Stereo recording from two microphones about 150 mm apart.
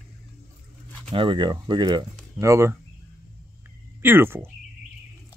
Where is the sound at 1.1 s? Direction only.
35° right (ahead or behind).